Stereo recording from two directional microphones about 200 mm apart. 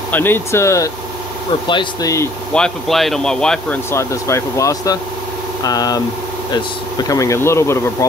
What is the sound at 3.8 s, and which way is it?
Speech, 15° left (ahead or behind).